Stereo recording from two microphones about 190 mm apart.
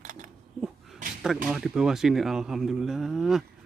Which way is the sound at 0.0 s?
40° right (ahead or behind).